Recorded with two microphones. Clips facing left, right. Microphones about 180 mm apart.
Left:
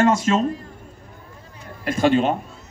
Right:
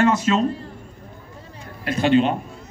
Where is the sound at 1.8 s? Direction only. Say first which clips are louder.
Right 1 dB; 45° left (ahead or behind).